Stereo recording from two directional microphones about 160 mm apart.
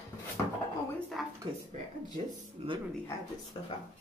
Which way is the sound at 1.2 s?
Centre (ahead or behind).